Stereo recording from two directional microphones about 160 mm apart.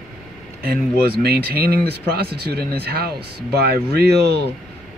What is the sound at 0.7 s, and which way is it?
Speech, 70° right (ahead or behind).